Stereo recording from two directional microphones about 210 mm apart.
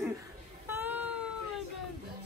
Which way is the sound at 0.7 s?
10° right (ahead or behind).